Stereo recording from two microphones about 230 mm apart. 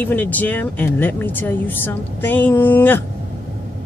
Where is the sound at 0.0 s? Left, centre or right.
Centre.